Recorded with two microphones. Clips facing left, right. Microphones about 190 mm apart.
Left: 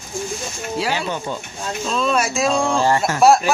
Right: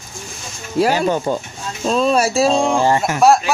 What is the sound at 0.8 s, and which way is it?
Speech, 45° right (ahead or behind).